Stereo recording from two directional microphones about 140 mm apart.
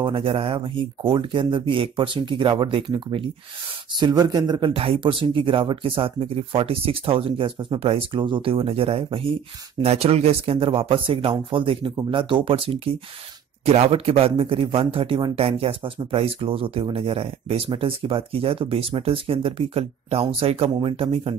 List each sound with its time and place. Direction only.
0.0 s speech: 40° right (ahead or behind)